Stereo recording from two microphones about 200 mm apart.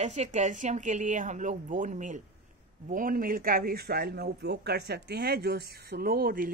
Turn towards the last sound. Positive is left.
turn(degrees=-45)  # may be behind; listen again after turning